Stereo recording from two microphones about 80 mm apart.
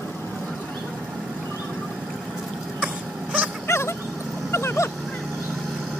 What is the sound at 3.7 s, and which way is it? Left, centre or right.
Dog, left.